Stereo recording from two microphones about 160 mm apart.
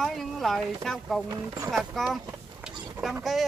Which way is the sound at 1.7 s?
Centre (ahead or behind).